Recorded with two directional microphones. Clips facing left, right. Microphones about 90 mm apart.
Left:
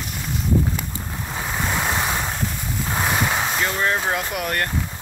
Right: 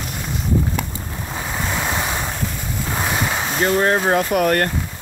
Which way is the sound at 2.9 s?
Centre (ahead or behind).